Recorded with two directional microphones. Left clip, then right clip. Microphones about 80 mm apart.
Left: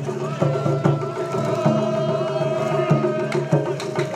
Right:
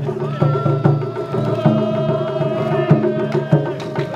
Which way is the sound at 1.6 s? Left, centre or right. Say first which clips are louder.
Right 3 dB; left.